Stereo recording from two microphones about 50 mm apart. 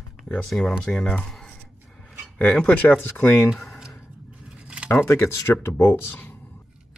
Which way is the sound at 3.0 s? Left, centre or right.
Left.